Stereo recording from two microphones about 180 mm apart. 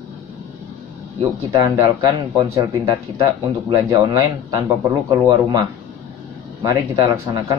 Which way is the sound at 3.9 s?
20° right (ahead or behind).